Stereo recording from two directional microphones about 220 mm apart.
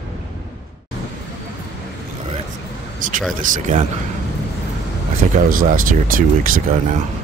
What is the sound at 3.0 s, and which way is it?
Speech, 35° right (ahead or behind).